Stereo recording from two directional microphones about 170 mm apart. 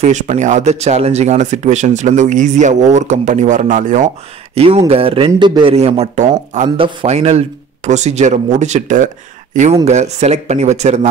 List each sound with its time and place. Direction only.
0.0 s speech: 45° right (ahead or behind)
4.6 s speech: 35° right (ahead or behind)